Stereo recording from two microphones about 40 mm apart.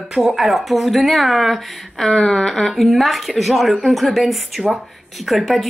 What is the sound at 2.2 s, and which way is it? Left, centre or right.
A child's voice, centre.